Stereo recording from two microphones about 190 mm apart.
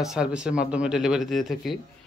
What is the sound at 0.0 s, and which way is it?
A man's voice, 5° right (ahead or behind).